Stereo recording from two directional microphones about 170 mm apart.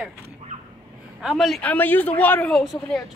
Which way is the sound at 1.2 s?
Centre (ahead or behind).